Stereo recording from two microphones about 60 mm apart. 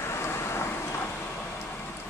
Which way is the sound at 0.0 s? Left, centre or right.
Left.